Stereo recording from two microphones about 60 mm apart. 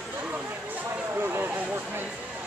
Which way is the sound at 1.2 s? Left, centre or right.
Right.